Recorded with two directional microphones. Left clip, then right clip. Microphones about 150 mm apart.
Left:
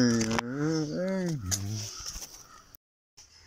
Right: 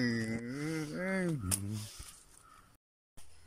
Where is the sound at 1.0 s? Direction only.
10° left (ahead or behind).